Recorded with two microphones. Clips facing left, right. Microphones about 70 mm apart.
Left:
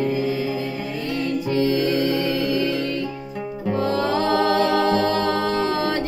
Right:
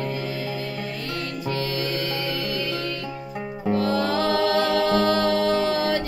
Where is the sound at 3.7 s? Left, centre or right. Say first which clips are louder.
Left 1 dB; left.